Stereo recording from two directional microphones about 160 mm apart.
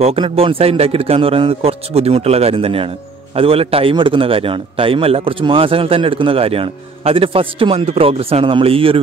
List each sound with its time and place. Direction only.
0.0 s a man's voice: 35° right (ahead or behind)